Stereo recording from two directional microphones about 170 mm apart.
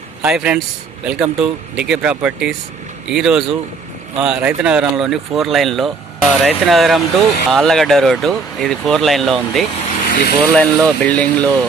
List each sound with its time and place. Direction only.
0.2 s speech: 5° right (ahead or behind)
10.0 s vehicle: 60° left (ahead or behind)
10.4 s speech: 5° left (ahead or behind)